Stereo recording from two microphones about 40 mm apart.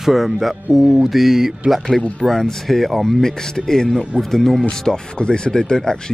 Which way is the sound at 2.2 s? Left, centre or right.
Centre.